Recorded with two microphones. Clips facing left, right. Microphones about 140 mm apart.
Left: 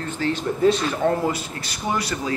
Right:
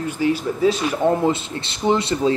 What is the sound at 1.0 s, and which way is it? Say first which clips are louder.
Speech: right 4 dB; 25° right (ahead or behind).